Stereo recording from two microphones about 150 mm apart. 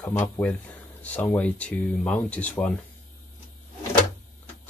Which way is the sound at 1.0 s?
10° left (ahead or behind).